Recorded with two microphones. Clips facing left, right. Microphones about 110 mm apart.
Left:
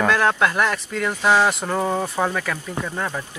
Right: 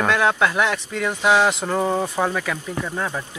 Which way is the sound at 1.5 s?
Centre (ahead or behind).